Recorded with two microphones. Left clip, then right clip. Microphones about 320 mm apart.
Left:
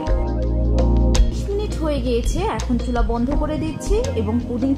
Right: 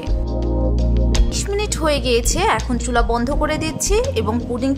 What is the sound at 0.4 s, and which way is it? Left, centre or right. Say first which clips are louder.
Music: right 1 dB; centre.